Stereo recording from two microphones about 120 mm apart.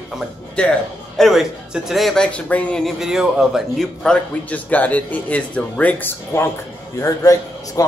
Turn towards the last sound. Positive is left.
turn(degrees=25)  # may be behind; listen again after turning